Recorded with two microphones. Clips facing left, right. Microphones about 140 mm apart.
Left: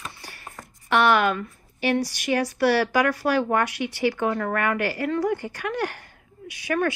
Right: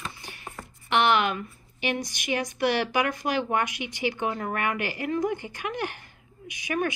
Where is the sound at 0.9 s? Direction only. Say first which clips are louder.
Left 3 dB; 45° left (ahead or behind).